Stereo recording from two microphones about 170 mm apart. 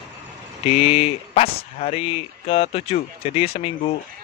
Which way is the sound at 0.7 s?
35° left (ahead or behind).